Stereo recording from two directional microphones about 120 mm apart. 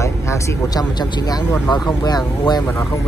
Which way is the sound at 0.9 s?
35° left (ahead or behind).